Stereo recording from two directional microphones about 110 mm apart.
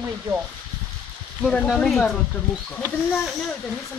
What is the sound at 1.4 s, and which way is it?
Speech, 5° left (ahead or behind).